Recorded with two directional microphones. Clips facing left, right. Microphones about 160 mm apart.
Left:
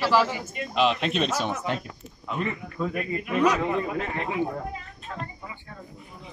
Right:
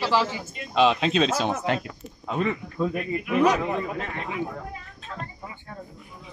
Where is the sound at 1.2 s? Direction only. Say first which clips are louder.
Right 3 dB; 90° right.